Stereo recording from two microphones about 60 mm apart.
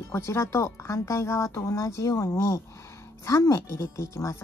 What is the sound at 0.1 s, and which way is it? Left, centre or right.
Speech, left.